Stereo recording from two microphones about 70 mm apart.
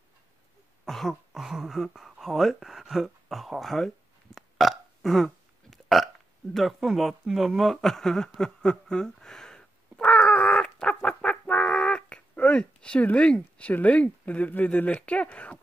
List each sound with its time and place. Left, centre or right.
0.8 s speech: centre; by 15.6 s left